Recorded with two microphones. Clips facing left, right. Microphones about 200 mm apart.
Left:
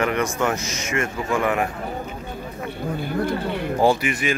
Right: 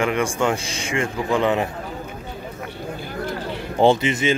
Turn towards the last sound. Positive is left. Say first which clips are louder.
# right 3 dB
turn(degrees=-25)  # may be behind; listen again after turning